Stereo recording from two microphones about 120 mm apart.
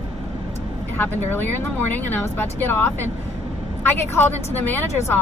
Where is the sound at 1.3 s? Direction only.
15° left (ahead or behind).